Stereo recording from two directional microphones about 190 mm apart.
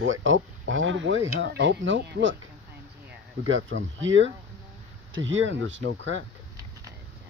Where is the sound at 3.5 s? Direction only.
85° right.